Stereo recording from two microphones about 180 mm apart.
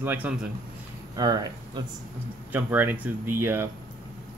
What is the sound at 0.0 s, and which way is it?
Speech, 10° right (ahead or behind).